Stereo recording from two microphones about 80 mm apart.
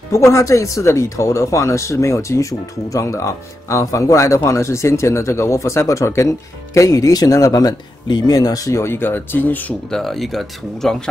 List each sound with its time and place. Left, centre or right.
0.1 s speech: left
9.9 s speech: centre